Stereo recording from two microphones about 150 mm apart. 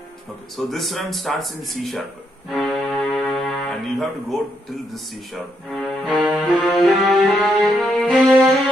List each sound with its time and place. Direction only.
0.6 s music: centre (ahead or behind)
4.9 s speech: 5° left (ahead or behind)
6.2 s music: 5° right (ahead or behind)